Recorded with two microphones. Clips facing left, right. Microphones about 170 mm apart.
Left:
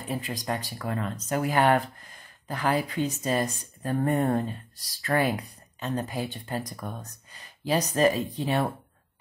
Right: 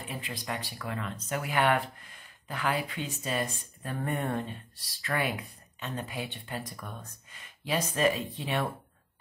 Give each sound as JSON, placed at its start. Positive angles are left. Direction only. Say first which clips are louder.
{"t": 0.0, "sound": "speech", "louder": "left 6 dB", "side_deg": 40}